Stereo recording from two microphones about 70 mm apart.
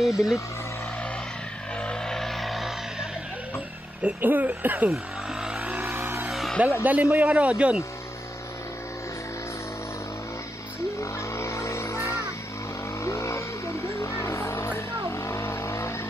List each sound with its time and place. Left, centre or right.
0.0 s speech: centre
1.8 s music: centre
2.1 s music: centre
4.0 s speech: right
4.9 s vehicle: centre
5.6 s vehicle: right
6.2 s music: centre
6.8 s speech: right
11.0 s music: left
13.0 s vehicle: left